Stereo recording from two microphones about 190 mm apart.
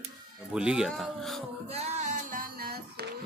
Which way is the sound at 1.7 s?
40° right (ahead or behind).